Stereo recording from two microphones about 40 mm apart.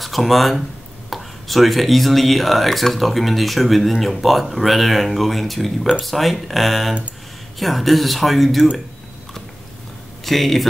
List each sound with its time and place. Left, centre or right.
0.0 s speech: centre
10.2 s speech: centre